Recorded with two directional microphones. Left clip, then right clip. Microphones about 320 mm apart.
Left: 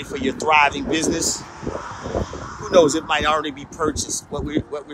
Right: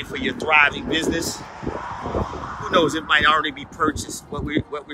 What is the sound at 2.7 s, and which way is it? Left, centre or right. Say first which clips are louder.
Speech: left 3 dB; centre.